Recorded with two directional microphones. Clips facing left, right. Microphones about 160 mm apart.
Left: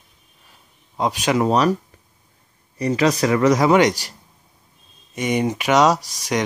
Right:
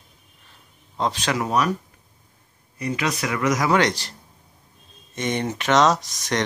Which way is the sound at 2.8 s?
35° left (ahead or behind).